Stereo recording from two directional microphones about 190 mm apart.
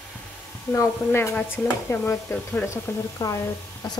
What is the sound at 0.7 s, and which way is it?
Speech, 15° left (ahead or behind).